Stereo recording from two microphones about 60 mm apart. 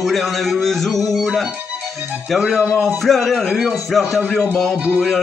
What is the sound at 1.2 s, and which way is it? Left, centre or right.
Music, centre.